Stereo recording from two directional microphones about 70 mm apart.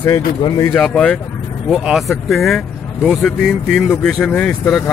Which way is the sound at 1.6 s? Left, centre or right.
Centre.